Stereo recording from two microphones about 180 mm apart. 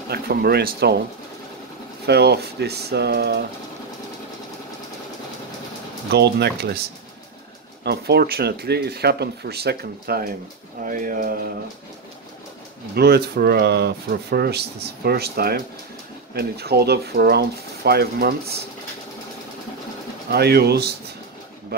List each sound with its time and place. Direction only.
0.1 s speech: 60° right (ahead or behind)
2.0 s speech: 65° right (ahead or behind)
6.1 s speech: 70° right (ahead or behind)
7.8 s speech: 65° right (ahead or behind)
12.9 s speech: 60° right (ahead or behind)
20.2 s speech: 60° right (ahead or behind)